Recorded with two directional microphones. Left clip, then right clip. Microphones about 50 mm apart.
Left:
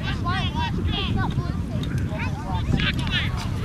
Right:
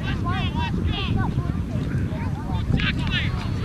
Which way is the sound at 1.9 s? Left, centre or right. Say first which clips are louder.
Left 1 dB; centre.